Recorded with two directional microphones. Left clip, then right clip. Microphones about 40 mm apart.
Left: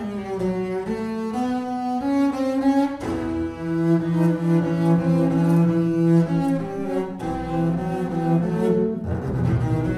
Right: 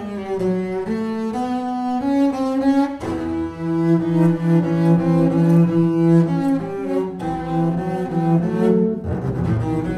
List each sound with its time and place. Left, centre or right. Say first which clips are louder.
1.5 s music: right 3 dB; right
3.7 s cello: right 4 dB; right
8.2 s cello: right 3 dB; right